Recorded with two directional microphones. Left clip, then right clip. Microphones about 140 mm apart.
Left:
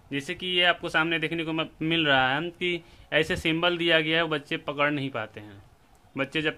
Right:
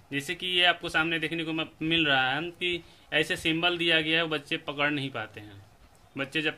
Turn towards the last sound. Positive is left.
turn(degrees=45)  # may be behind; listen again after turning